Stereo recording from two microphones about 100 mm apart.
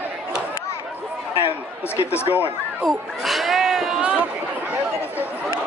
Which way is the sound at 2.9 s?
Centre (ahead or behind).